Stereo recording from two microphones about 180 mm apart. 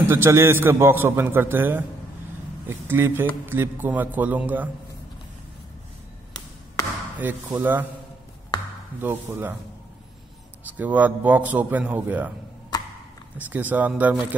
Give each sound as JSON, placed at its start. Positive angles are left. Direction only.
{"t": 0.0, "sound": "a man's voice", "side_deg": -15}
{"t": 7.5, "sound": "a man's voice", "side_deg": -10}
{"t": 9.0, "sound": "a man's voice", "side_deg": -10}
{"t": 10.8, "sound": "a man's voice", "side_deg": -10}
{"t": 13.4, "sound": "a man's voice", "side_deg": -10}